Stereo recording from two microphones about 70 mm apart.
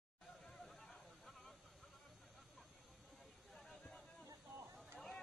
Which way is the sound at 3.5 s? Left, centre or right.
Centre.